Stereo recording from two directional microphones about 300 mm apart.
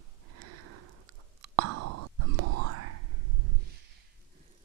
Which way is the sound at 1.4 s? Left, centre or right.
Right.